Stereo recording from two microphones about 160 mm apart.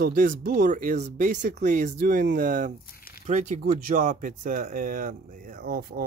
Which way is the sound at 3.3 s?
50° right (ahead or behind).